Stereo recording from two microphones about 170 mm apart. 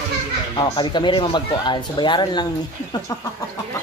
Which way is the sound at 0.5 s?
25° left (ahead or behind).